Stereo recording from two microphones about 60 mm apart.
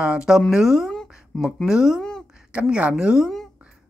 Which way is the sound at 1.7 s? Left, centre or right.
Centre.